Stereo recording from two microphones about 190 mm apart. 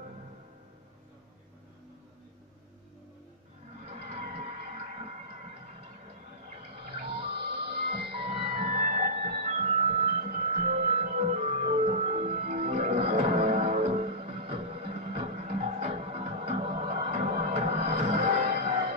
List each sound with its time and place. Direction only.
3.8 s a sound: 35° right (ahead or behind)
7.8 s music: 55° right (ahead or behind)
8.1 s music: 30° right (ahead or behind)
8.6 s music: 40° right (ahead or behind)